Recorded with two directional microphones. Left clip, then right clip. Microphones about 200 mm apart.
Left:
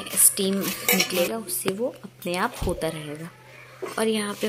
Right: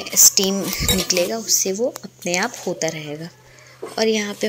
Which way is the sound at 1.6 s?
15° right (ahead or behind).